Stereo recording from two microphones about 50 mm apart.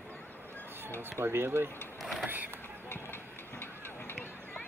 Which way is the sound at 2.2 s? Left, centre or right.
Right.